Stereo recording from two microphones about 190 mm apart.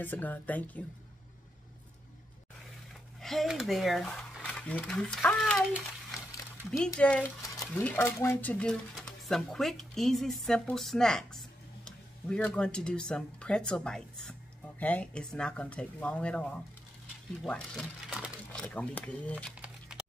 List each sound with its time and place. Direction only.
0.0 s speech: 10° left (ahead or behind)
3.2 s speech: centre (ahead or behind)
6.8 s speech: 5° left (ahead or behind)
7.4 s stir: 20° left (ahead or behind)
7.8 s speech: 10° left (ahead or behind)
19.5 s crumpling: 5° right (ahead or behind)